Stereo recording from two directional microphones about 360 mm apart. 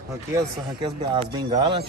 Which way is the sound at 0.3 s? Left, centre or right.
Centre.